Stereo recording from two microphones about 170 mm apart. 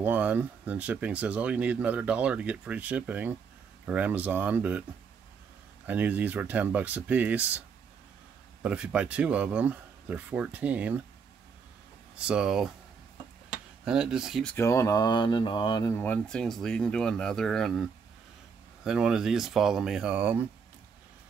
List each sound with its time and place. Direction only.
0.0 s speech: 10° right (ahead or behind)
5.9 s speech: 10° right (ahead or behind)
8.6 s speech: 5° right (ahead or behind)
12.2 s speech: 5° right (ahead or behind)
13.8 s speech: 5° right (ahead or behind)
14.5 s speech: 15° left (ahead or behind)
16.0 s speech: 5° left (ahead or behind)
18.9 s speech: 5° right (ahead or behind)